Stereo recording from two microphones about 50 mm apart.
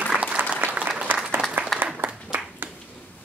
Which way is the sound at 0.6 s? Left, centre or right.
Right.